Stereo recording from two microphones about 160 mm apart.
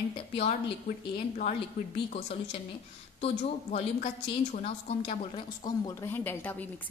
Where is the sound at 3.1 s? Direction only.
40° left (ahead or behind).